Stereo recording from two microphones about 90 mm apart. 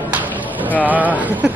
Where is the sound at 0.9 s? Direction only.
20° right (ahead or behind).